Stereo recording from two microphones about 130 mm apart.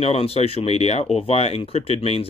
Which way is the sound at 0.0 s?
50° left (ahead or behind).